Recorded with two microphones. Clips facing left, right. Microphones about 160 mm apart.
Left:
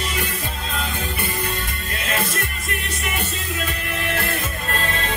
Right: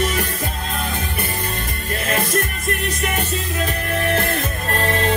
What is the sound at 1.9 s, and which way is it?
Music, 45° right (ahead or behind).